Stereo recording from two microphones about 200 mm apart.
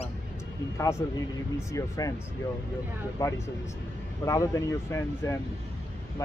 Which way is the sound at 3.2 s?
15° left (ahead or behind).